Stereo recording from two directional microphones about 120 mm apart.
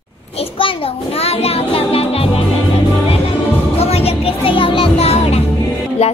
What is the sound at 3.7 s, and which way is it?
Music, 55° left (ahead or behind).